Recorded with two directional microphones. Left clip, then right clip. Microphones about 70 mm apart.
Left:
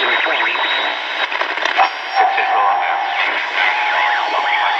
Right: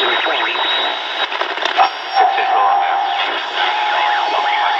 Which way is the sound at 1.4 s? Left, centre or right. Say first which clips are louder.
Right 1 dB; right.